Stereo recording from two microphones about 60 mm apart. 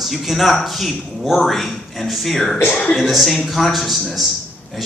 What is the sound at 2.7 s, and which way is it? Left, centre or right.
Speech, centre.